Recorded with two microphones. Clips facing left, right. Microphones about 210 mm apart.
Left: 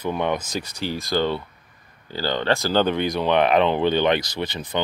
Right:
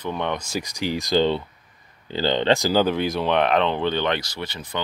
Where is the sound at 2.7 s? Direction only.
5° right (ahead or behind).